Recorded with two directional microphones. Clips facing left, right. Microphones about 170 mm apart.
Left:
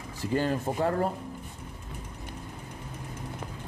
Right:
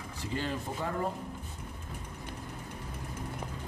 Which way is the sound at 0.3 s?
50° left (ahead or behind).